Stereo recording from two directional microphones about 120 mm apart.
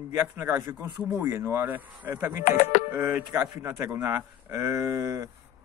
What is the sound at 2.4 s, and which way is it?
Speech, 85° left.